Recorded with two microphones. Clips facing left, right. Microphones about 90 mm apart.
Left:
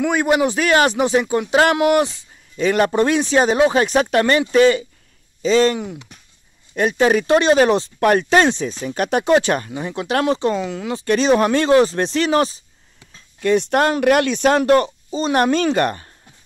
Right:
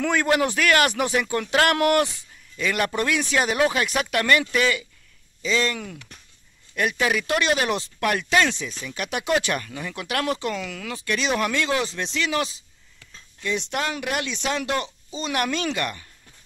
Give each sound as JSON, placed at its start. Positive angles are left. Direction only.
{"t": 0.0, "sound": "speech", "side_deg": 15}
{"t": 5.8, "sound": "speech", "side_deg": 20}
{"t": 11.1, "sound": "speech", "side_deg": 35}
{"t": 13.4, "sound": "speech", "side_deg": 50}